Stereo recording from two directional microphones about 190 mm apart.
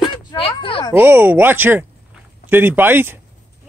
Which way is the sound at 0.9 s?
10° right (ahead or behind).